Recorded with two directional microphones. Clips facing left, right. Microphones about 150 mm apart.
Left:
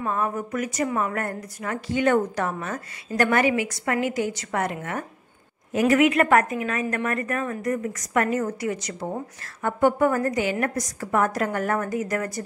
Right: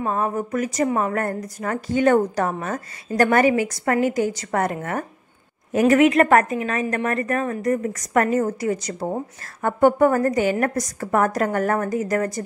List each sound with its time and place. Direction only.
0.0 s a woman's voice: 30° right (ahead or behind)